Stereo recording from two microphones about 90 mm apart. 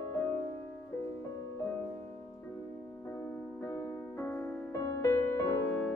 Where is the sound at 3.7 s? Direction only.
25° left (ahead or behind).